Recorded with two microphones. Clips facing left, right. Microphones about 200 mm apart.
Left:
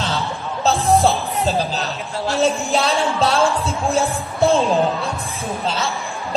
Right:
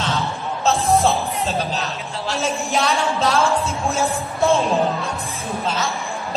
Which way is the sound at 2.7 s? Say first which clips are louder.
Left 2 dB; 30° left (ahead or behind).